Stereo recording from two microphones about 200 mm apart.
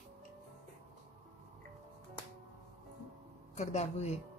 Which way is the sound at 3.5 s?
35° left (ahead or behind).